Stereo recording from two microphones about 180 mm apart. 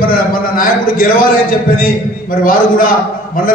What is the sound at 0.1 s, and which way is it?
A man's voice, 50° left (ahead or behind).